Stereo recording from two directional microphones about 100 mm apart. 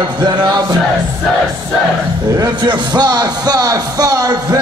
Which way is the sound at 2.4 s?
45° right (ahead or behind).